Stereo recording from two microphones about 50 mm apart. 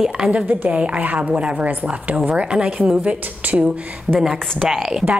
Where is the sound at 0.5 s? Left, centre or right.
Right.